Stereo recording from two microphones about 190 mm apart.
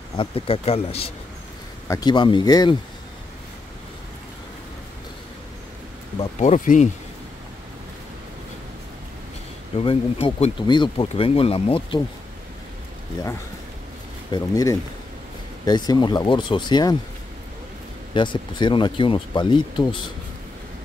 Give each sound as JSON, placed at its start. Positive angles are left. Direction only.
{"t": 0.2, "sound": "speech", "side_deg": 30}
{"t": 1.9, "sound": "speech", "side_deg": 20}
{"t": 6.4, "sound": "speech", "side_deg": 40}
{"t": 9.8, "sound": "speech", "side_deg": 30}
{"t": 14.3, "sound": "speech", "side_deg": 20}
{"t": 18.1, "sound": "speech", "side_deg": 25}